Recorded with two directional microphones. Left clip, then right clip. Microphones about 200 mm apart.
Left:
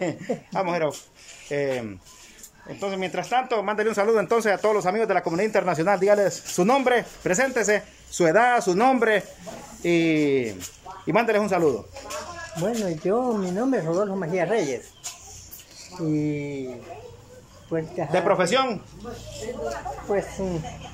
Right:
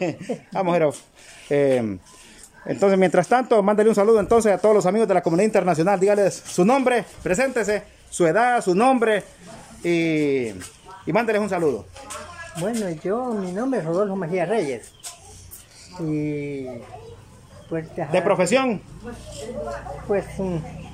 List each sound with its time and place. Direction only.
0.0 s speech: 5° right (ahead or behind)
2.6 s speech: 30° right (ahead or behind); by 14.8 s 5° right (ahead or behind)
16.1 s speech: centre (ahead or behind)
17.6 s speech: centre (ahead or behind)
20.1 s speech: 5° right (ahead or behind)